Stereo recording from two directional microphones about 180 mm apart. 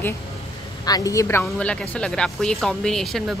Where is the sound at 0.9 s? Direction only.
20° left (ahead or behind).